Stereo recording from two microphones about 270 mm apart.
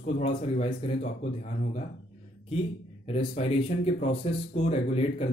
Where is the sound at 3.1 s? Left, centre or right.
Left.